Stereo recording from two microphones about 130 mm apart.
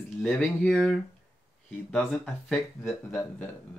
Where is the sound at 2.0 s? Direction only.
Centre (ahead or behind).